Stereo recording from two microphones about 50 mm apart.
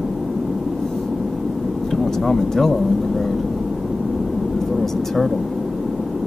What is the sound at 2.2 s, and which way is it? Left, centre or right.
Speech, centre.